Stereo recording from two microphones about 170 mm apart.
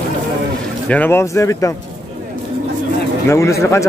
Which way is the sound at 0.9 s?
10° left (ahead or behind).